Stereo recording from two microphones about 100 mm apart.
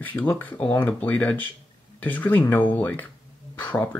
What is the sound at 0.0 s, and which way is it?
Speech, 15° left (ahead or behind).